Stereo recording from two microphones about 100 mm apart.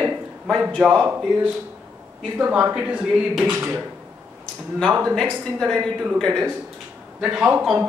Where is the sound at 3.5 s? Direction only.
25° right (ahead or behind).